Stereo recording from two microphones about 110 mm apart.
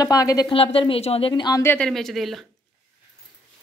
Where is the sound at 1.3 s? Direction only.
40° left (ahead or behind).